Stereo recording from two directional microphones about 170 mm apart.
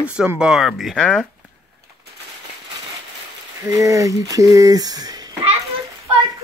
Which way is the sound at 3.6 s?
20° right (ahead or behind).